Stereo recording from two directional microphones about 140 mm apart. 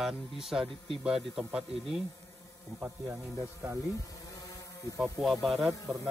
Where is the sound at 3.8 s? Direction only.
25° left (ahead or behind).